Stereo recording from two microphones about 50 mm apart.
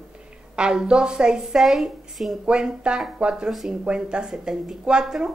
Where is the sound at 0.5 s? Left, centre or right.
Centre.